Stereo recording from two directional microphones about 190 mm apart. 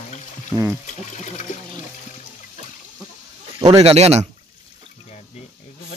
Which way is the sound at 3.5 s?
20° right (ahead or behind).